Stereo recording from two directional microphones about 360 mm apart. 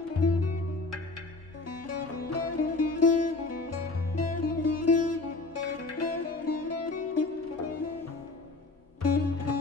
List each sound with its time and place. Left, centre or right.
0.2 s music: left
1.8 s music: left
9.0 s music: left